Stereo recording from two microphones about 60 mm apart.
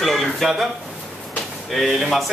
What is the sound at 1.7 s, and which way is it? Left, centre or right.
Speech, centre.